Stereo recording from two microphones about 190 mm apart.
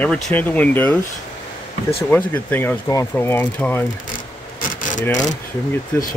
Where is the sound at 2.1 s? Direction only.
10° left (ahead or behind).